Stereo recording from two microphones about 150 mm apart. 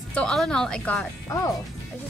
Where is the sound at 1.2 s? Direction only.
20° left (ahead or behind).